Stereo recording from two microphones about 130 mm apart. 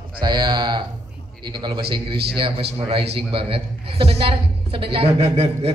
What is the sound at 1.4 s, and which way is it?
A man's voice, 35° right (ahead or behind).